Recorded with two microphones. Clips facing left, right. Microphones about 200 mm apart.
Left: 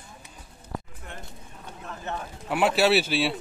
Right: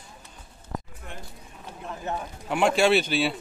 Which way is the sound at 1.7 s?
10° right (ahead or behind).